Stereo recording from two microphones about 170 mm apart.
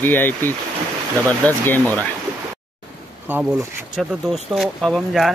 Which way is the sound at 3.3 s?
10° right (ahead or behind).